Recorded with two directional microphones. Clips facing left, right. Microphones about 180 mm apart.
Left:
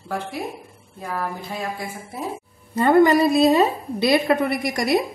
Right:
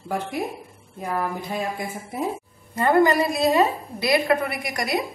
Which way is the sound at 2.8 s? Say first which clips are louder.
Left 3 dB; 25° left (ahead or behind).